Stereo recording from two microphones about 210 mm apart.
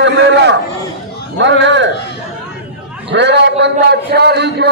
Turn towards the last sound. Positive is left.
turn(degrees=-50)  # may be behind; listen again after turning